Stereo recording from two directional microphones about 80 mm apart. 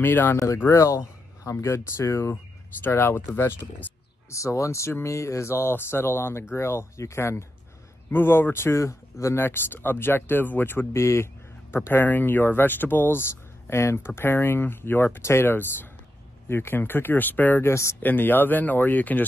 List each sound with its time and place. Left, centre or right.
0.0 s speech: left
0.7 s speech: left